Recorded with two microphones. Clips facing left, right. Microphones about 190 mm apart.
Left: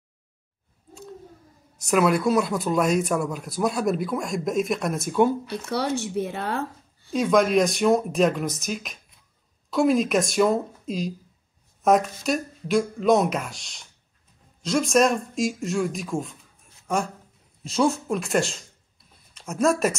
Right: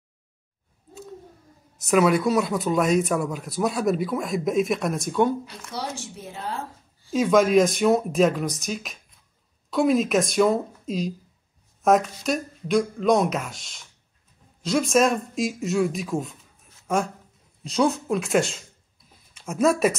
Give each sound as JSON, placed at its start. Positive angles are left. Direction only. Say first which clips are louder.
{"t": 1.8, "sound": "speech", "louder": "right 1 dB", "side_deg": 0}
{"t": 5.5, "sound": "speech", "louder": "left 7 dB", "side_deg": 65}
{"t": 7.1, "sound": "speech", "louder": "right 1 dB", "side_deg": 0}